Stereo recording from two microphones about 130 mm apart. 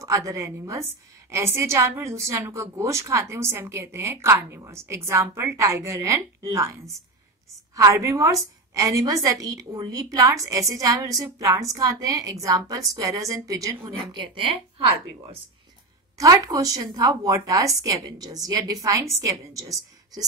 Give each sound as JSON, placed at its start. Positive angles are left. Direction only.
{"t": 0.0, "sound": "a woman's voice", "side_deg": -25}
{"t": 16.2, "sound": "a woman's voice", "side_deg": -25}